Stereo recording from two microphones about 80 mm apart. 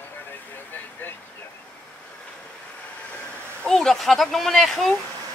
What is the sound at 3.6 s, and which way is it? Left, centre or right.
Speech, centre.